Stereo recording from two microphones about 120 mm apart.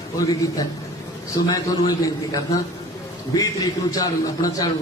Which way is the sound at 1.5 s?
30° left (ahead or behind).